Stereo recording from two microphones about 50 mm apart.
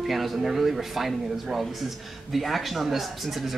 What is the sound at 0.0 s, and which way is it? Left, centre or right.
A man's voice, centre.